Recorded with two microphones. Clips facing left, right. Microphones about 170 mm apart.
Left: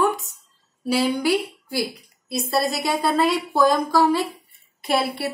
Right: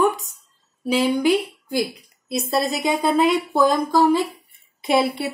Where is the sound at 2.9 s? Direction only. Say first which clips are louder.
Right 4 dB; 15° right (ahead or behind).